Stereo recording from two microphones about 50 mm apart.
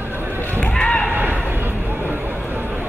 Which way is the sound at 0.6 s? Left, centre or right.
Centre.